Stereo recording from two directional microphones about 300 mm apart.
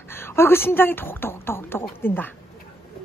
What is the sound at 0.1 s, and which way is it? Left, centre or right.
Speech, centre.